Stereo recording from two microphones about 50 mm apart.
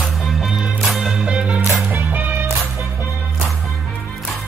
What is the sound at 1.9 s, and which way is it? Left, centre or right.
Music, right.